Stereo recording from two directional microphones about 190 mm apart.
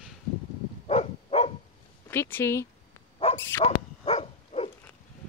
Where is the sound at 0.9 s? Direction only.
30° left (ahead or behind).